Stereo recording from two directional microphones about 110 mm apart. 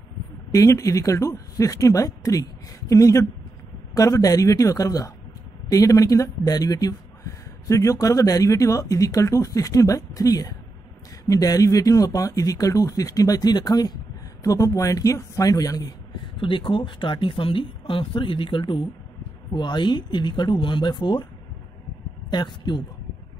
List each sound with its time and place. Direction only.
0.5 s speech: 30° left (ahead or behind)
16.3 s speech: 50° left (ahead or behind)
22.3 s speech: 40° left (ahead or behind)